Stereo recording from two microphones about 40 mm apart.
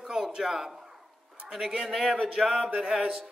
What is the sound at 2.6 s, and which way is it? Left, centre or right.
Speech, right.